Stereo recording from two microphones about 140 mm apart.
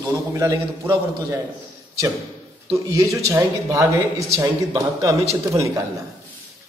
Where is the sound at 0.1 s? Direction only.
25° right (ahead or behind).